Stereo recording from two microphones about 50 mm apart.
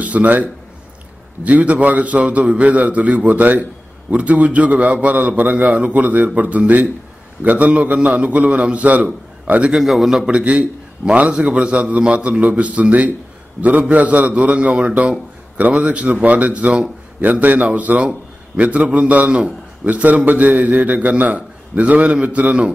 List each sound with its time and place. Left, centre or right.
0.0 s a man's voice: right
9.7 s a man's voice: centre
10.2 s a man's voice: centre